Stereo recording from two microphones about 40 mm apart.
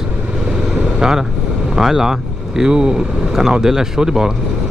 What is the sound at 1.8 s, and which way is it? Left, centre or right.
Speech, centre.